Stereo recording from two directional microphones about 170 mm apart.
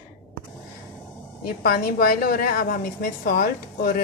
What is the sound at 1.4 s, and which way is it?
A woman's voice, 60° left (ahead or behind).